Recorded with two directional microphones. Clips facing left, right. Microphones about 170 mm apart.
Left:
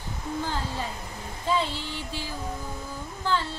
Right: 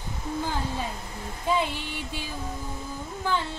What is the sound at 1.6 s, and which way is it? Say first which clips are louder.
Speech: right 1 dB; 15° right (ahead or behind).